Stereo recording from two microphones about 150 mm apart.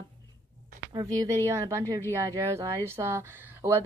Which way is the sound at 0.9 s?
25° right (ahead or behind).